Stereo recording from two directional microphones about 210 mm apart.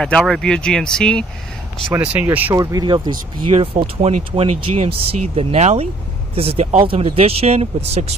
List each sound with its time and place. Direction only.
0.0 s speech: centre (ahead or behind)
2.0 s speech: 10° right (ahead or behind); by 8.0 s 30° right (ahead or behind)